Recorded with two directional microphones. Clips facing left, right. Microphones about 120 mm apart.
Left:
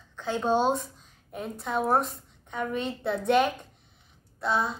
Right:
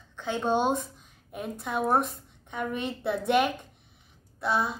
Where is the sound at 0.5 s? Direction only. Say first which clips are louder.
Left 1 dB; 15° right (ahead or behind).